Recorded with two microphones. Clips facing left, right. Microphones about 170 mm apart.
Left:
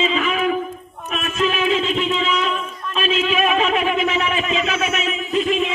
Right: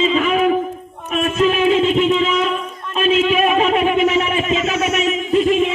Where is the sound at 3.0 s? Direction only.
50° right (ahead or behind).